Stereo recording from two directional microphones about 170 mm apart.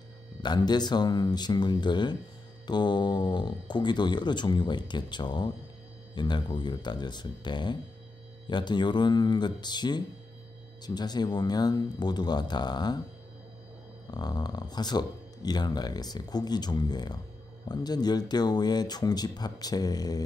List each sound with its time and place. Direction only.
0.4 s speech: 25° left (ahead or behind)
14.1 s speech: 25° left (ahead or behind)